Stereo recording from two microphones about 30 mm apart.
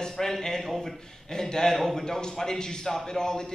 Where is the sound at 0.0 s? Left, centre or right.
Centre.